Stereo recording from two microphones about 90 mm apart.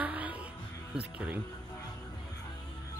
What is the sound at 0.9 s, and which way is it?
Speech, 15° right (ahead or behind).